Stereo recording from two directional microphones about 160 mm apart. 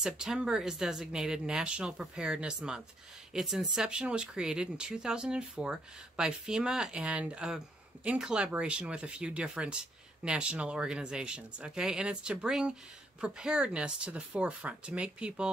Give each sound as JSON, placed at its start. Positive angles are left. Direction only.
{"t": 0.0, "sound": "speech", "side_deg": -5}